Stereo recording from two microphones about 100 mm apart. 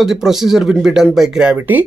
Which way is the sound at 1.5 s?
15° right (ahead or behind).